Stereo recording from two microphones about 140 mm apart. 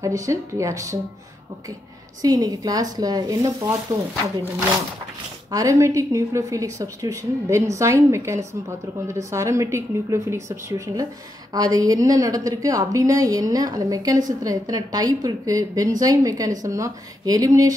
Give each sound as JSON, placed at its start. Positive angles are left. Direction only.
{"t": 0.0, "sound": "a woman's voice", "side_deg": -20}
{"t": 2.2, "sound": "a woman's voice", "side_deg": -25}
{"t": 5.5, "sound": "a woman's voice", "side_deg": -25}